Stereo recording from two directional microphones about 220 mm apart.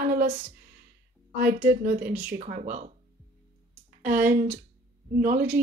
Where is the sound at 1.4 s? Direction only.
45° right (ahead or behind).